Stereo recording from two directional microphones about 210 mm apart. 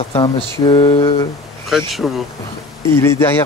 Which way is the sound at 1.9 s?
Centre (ahead or behind).